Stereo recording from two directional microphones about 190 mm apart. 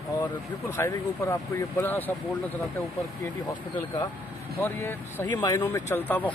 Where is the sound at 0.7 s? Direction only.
15° left (ahead or behind).